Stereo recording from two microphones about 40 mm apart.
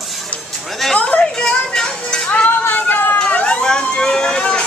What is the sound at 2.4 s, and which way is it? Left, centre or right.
Music, left.